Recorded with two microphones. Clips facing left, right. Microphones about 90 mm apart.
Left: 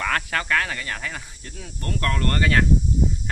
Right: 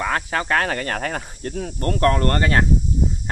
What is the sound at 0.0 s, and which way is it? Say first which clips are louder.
Speech: right 2 dB; 20° right (ahead or behind).